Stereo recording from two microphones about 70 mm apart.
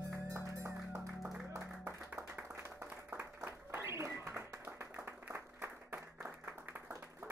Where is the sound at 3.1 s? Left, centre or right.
Right.